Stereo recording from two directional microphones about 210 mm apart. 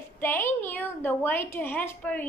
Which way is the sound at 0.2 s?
10° left (ahead or behind).